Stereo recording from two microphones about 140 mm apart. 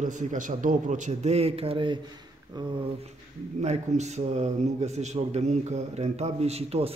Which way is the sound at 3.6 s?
55° right (ahead or behind).